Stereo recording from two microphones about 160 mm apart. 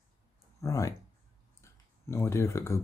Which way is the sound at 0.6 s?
20° left (ahead or behind).